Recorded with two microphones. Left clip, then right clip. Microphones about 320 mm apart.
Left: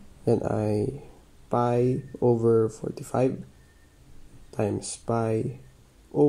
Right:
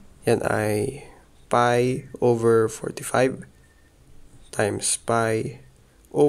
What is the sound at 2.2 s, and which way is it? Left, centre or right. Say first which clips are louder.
Speech: right 3 dB; right.